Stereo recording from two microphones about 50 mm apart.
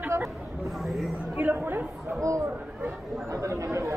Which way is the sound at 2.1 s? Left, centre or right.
Right.